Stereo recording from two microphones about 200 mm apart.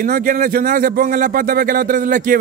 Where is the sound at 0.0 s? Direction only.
45° right (ahead or behind).